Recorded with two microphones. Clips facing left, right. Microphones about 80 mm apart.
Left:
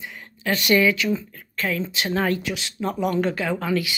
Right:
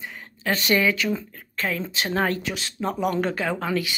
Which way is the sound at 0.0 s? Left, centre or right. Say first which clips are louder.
Even; right.